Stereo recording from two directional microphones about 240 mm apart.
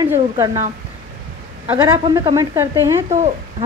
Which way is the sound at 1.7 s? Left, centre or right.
Centre.